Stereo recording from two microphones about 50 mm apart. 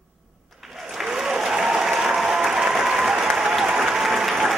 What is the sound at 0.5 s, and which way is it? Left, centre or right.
Applause, centre.